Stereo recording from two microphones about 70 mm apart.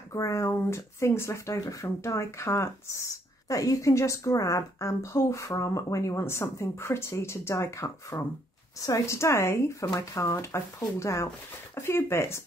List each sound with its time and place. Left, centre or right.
0.1 s speech: left